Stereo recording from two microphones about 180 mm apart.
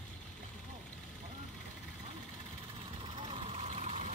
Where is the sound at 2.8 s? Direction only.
30° right (ahead or behind).